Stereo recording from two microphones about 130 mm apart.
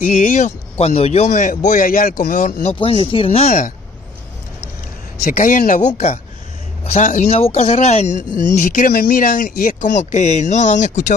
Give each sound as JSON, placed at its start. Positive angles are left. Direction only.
{"t": 0.0, "sound": "speech", "side_deg": 65}
{"t": 0.7, "sound": "speech", "side_deg": 50}
{"t": 2.7, "sound": "speech", "side_deg": 45}
{"t": 5.2, "sound": "speech", "side_deg": 90}
{"t": 8.5, "sound": "speech", "side_deg": 85}